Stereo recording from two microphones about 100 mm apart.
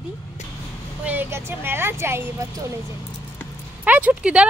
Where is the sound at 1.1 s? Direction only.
20° right (ahead or behind).